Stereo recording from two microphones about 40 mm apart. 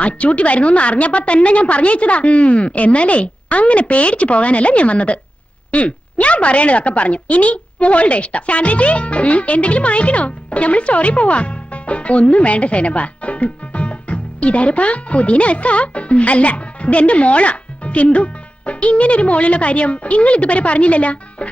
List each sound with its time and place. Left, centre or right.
0.0 s a woman's voice: left